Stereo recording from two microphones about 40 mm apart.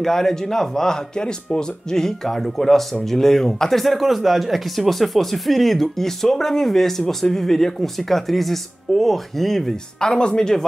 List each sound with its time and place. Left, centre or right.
0.0 s speech: centre
3.8 s speech: centre
9.9 s speech: left